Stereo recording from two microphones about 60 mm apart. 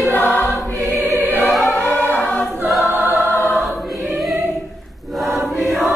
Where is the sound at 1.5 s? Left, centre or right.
Centre.